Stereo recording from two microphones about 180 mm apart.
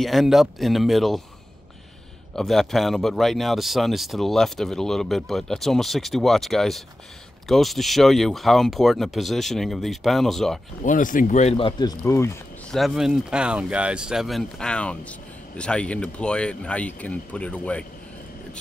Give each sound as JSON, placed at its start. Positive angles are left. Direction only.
{"t": 0.0, "sound": "speech", "side_deg": 0}
{"t": 2.3, "sound": "speech", "side_deg": 0}
{"t": 10.8, "sound": "speech", "side_deg": 45}
{"t": 12.7, "sound": "speech", "side_deg": 0}